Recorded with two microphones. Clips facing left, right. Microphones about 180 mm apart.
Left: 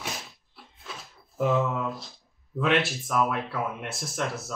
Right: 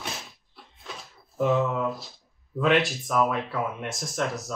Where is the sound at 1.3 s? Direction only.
Centre (ahead or behind).